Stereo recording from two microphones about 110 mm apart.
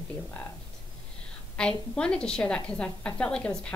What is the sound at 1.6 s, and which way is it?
A woman's voice, 10° left (ahead or behind).